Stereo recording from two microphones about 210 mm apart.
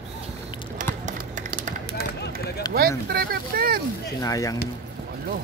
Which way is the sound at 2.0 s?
50° left (ahead or behind).